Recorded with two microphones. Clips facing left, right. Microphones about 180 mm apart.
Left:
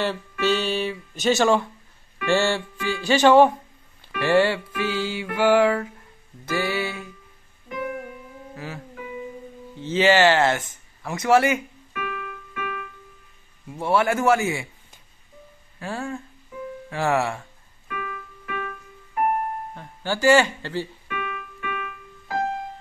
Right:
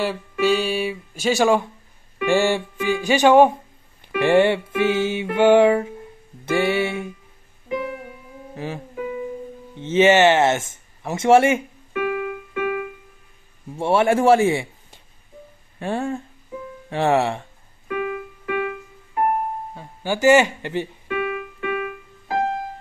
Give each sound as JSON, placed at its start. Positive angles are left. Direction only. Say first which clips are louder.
{"t": 0.0, "sound": "speech", "louder": "right 3 dB", "side_deg": -10}
{"t": 4.0, "sound": "music", "louder": "right 3 dB", "side_deg": -20}
{"t": 8.5, "sound": "music", "louder": "right 6 dB", "side_deg": -20}
{"t": 9.8, "sound": "a sound", "louder": "right 3 dB", "side_deg": -25}
{"t": 13.7, "sound": "a man's voice", "louder": "right 4 dB", "side_deg": -25}
{"t": 15.8, "sound": "music", "louder": "right 6 dB", "side_deg": -25}
{"t": 17.8, "sound": "keyboard", "louder": "right 9 dB", "side_deg": -25}
{"t": 19.7, "sound": "speech", "louder": "right 3 dB", "side_deg": -10}
{"t": 21.1, "sound": "keyboard", "louder": "right 7 dB", "side_deg": -30}